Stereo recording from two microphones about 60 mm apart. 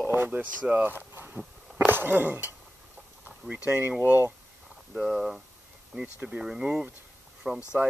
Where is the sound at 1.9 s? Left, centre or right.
Right.